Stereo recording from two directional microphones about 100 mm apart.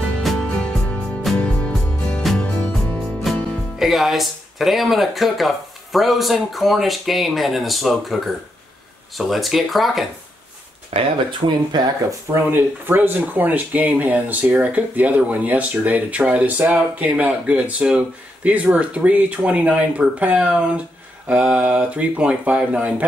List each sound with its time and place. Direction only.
0.2 s music: 5° left (ahead or behind)
3.3 s music: centre (ahead or behind)
3.7 s speech: centre (ahead or behind)
10.9 s speech: 85° right
11.4 s speech: 50° right (ahead or behind)
12.1 s speech: 25° right (ahead or behind)